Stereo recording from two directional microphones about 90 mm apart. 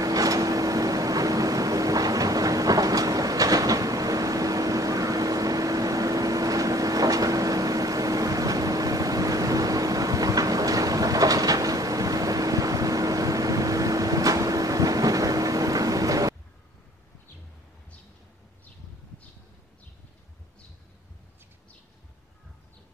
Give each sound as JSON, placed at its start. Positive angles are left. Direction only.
{"t": 0.0, "sound": "vehicle", "side_deg": -40}